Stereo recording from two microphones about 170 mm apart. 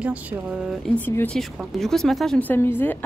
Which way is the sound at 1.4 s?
Centre (ahead or behind).